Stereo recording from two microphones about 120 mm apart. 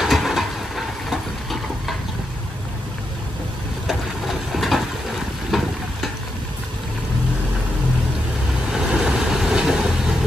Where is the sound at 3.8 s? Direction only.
Centre (ahead or behind).